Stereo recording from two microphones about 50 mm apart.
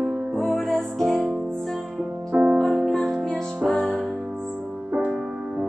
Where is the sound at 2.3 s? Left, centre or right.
Right.